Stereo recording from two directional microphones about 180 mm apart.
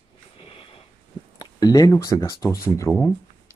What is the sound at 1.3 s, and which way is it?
Speech, 20° left (ahead or behind).